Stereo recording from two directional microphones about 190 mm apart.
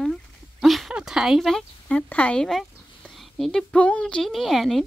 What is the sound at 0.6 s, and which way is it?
A woman's voice, centre (ahead or behind).